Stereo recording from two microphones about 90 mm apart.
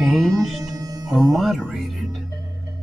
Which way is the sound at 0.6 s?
45° right (ahead or behind).